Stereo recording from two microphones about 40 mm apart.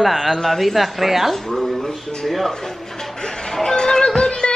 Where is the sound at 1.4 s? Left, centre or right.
Centre.